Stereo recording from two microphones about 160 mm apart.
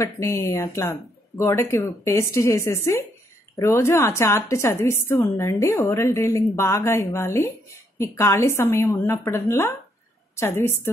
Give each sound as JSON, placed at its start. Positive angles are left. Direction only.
{"t": 0.0, "sound": "a woman's voice", "side_deg": 20}